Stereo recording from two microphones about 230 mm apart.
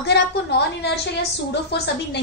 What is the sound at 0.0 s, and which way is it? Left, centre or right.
A woman's voice, left.